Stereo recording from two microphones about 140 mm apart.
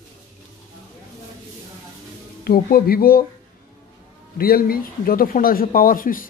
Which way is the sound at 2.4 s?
90° left.